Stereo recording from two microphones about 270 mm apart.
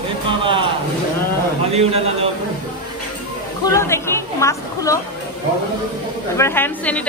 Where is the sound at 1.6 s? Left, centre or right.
Right.